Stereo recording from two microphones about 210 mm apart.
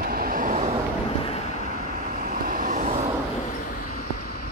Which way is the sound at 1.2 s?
30° left (ahead or behind).